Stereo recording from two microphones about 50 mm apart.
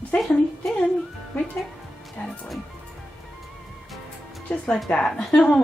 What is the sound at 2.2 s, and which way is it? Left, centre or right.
Speech, left.